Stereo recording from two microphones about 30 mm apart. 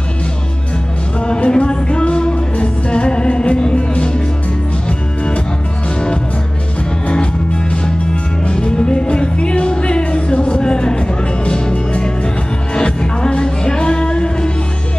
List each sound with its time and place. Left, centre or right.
1.2 s music: left
7.7 s music: left